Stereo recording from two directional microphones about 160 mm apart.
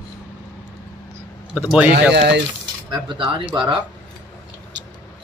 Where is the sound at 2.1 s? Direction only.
90° right.